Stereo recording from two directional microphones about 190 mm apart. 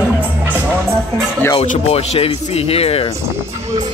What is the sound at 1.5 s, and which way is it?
Speech, 35° left (ahead or behind).